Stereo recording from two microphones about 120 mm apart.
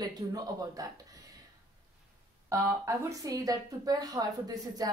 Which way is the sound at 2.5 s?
25° right (ahead or behind).